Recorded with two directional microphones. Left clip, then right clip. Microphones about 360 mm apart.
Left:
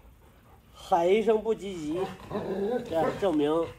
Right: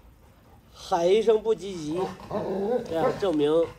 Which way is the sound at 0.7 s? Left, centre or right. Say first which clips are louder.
Right 1 dB; left.